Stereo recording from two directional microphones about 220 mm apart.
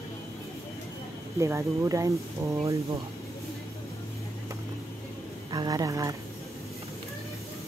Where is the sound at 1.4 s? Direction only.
15° right (ahead or behind).